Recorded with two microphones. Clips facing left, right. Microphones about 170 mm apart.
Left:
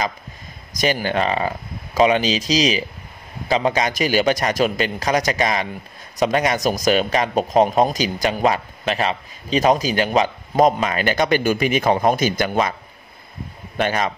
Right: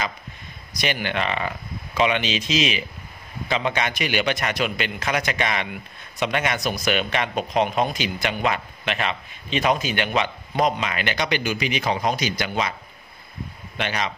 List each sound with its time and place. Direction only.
0.7 s a man's voice: 40° left (ahead or behind)
13.7 s a man's voice: 45° left (ahead or behind)